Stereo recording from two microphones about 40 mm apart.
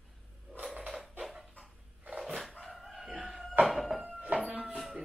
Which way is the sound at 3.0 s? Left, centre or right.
Centre.